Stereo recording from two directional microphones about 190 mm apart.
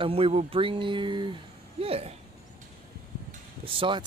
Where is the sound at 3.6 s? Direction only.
25° right (ahead or behind).